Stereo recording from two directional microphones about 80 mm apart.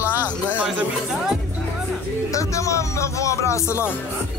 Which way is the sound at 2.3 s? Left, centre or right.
Left.